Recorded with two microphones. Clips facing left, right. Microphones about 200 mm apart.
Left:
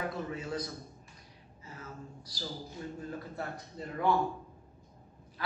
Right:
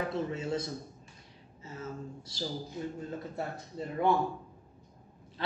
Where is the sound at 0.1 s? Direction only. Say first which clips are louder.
Right 4 dB; 25° right (ahead or behind).